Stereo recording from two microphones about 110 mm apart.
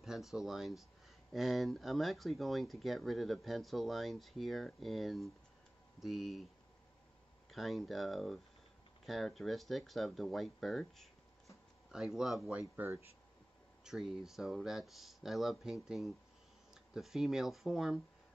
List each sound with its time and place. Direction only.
0.0 s speech: 5° right (ahead or behind)
7.5 s speech: centre (ahead or behind)
12.4 s speech: 15° right (ahead or behind)
13.8 s speech: 5° right (ahead or behind)